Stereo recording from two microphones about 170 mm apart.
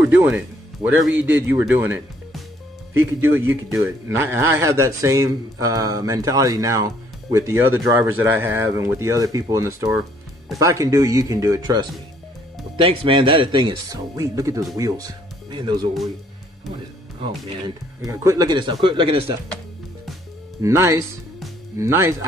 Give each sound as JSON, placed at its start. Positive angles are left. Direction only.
{"t": 0.1, "sound": "speech", "side_deg": -10}
{"t": 12.8, "sound": "speech", "side_deg": -30}
{"t": 17.2, "sound": "speech", "side_deg": -25}
{"t": 20.6, "sound": "speech", "side_deg": -15}